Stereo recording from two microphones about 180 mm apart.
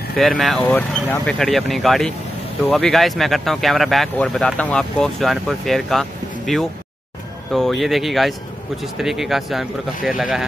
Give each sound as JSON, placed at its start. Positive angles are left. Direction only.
{"t": 0.2, "sound": "speech", "side_deg": 0}